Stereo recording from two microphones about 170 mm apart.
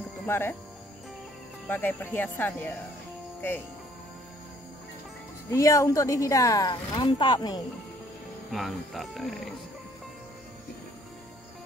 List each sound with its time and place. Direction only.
0.3 s speech: 15° left (ahead or behind)
1.7 s speech: 10° left (ahead or behind)
5.5 s a woman's voice: 20° left (ahead or behind)
8.5 s speech: centre (ahead or behind)